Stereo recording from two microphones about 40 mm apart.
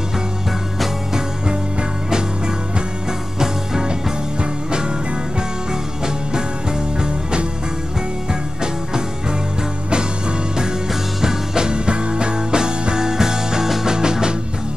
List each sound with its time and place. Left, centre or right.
2.0 s music: centre
7.0 s music: centre
10.6 s music: centre